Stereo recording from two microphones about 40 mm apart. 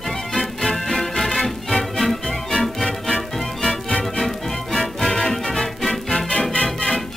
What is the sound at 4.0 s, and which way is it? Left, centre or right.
Music, centre.